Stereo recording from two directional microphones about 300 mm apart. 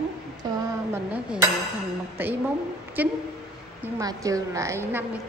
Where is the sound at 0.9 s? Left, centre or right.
Centre.